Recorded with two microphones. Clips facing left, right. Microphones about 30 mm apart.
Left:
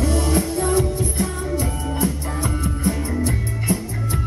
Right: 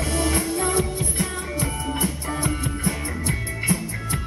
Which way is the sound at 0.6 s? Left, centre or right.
Right.